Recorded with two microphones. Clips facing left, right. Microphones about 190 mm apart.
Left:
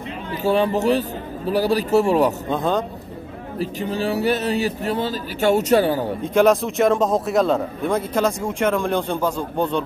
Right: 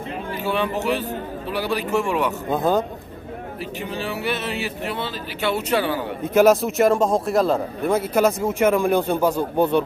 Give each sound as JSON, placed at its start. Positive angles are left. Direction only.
{"t": 0.4, "sound": "speech", "side_deg": 40}
{"t": 2.5, "sound": "a man's voice", "side_deg": -5}
{"t": 3.5, "sound": "speech", "side_deg": 40}
{"t": 6.3, "sound": "a man's voice", "side_deg": -5}